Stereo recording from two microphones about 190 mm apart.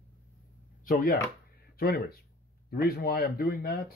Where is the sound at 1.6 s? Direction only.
55° left (ahead or behind).